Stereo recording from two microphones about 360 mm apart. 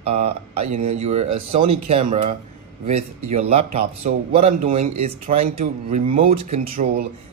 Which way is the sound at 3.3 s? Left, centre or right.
Centre.